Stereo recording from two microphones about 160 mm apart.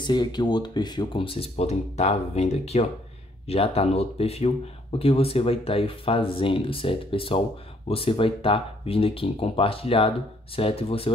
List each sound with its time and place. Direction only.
0.0 s speech: 25° left (ahead or behind)